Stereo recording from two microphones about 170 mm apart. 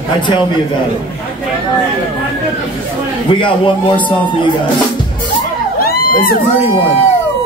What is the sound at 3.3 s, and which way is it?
A man's voice, 30° left (ahead or behind).